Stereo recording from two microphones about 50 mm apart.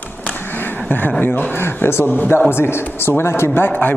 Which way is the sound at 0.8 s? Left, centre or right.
Left.